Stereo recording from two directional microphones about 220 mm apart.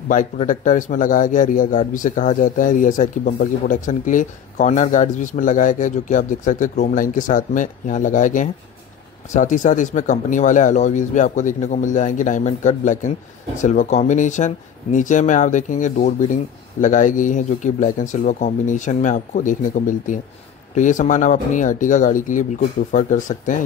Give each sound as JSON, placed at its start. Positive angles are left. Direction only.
{"t": 0.1, "sound": "a man's voice", "side_deg": 35}